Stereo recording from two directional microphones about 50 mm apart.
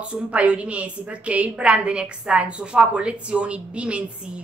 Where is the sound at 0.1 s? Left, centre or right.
Right.